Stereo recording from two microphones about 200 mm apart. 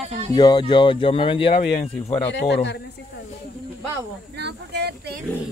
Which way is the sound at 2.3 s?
60° left (ahead or behind).